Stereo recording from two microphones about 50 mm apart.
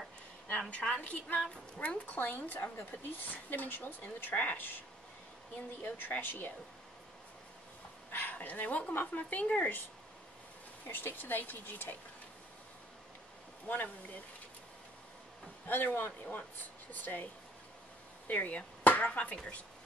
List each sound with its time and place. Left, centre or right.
0.5 s a woman's voice: left
8.1 s speech: left
10.9 s a woman's voice: left
13.7 s a woman's voice: left
15.6 s a woman's voice: left
18.2 s chop: left